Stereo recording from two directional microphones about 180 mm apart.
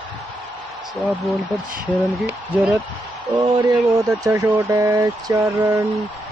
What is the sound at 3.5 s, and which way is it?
Speech, 20° right (ahead or behind).